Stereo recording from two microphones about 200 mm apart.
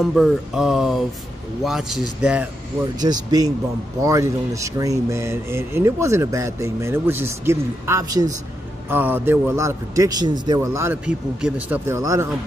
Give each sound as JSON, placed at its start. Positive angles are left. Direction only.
{"t": 0.0, "sound": "speech", "side_deg": 0}
{"t": 3.0, "sound": "speech", "side_deg": -20}